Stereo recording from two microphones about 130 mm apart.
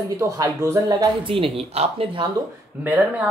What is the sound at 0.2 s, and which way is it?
Speech, 20° right (ahead or behind).